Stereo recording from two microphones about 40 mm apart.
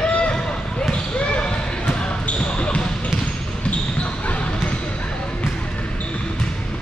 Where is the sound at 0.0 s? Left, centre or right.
Left.